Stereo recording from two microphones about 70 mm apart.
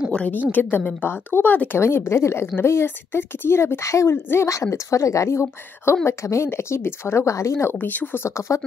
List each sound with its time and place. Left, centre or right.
0.1 s a woman's voice: centre
1.8 s a woman's voice: left
7.8 s a woman's voice: left